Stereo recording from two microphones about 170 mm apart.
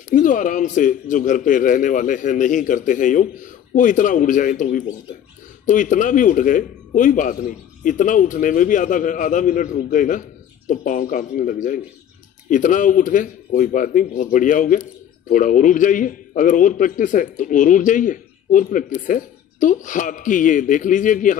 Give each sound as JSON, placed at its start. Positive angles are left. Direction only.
{"t": 0.1, "sound": "speech", "side_deg": 50}